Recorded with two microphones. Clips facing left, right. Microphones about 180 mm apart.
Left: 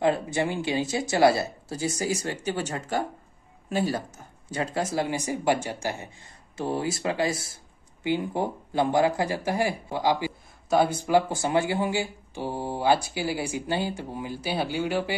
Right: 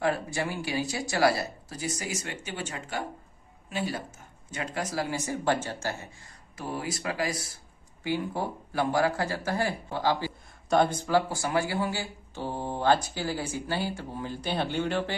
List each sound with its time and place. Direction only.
0.0 s speech: 20° left (ahead or behind); by 4.0 s 40° left (ahead or behind)
4.5 s speech: 30° left (ahead or behind); by 15.1 s 10° left (ahead or behind)